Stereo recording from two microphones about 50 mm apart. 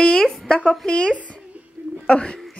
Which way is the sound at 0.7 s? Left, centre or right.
Centre.